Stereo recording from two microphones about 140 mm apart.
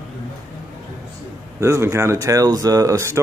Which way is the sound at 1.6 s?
20° right (ahead or behind).